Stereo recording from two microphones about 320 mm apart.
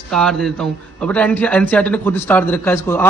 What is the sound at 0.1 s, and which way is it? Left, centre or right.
A man's voice, centre.